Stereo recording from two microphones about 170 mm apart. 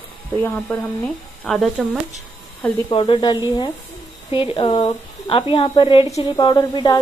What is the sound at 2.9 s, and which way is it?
Speech, 30° left (ahead or behind).